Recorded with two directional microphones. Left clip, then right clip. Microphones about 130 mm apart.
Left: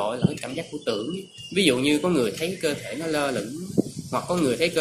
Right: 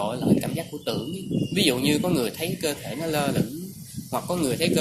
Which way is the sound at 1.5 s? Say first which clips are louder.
Left 2 dB; 50° right (ahead or behind).